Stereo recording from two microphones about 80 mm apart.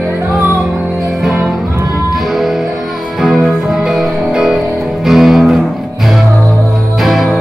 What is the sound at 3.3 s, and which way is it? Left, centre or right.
Music, centre.